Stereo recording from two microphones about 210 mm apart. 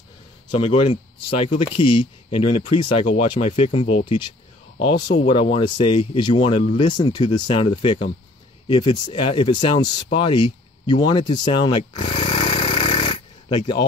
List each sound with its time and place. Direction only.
0.5 s speech: 25° left (ahead or behind)